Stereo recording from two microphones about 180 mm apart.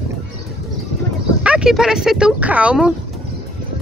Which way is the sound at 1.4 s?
5° right (ahead or behind).